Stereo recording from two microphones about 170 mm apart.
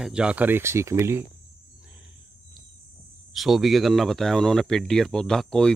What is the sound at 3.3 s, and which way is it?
Speech, centre (ahead or behind).